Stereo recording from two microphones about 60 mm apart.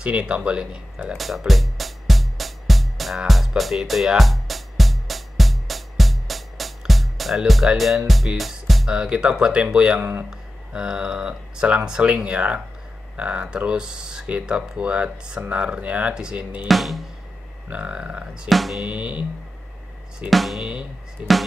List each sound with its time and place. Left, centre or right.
0.0 s speech: centre
1.1 s speech: centre
1.5 s music: centre
8.1 s speech: centre
8.9 s speech: centre
16.6 s speech: centre
17.6 s speech: right
18.5 s speech: centre
18.9 s speech: right
20.2 s speech: centre